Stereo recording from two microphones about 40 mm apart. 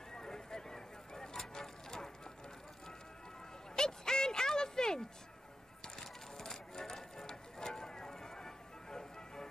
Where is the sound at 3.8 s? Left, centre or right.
Centre.